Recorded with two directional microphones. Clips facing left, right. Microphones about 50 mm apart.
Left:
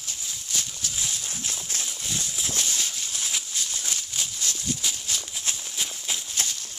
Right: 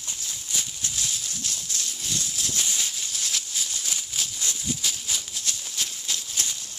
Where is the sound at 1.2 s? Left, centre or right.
Left.